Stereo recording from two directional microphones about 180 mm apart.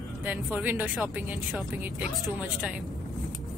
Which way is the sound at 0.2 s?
10° right (ahead or behind).